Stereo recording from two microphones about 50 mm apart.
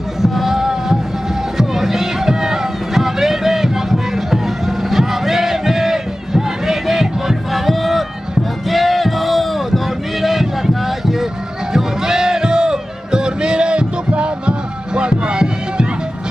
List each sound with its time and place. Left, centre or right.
0.2 s music: centre
8.6 s a sound: centre
11.7 s music: centre